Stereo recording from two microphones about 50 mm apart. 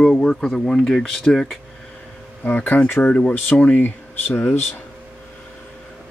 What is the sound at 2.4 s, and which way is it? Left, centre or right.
Speech, left.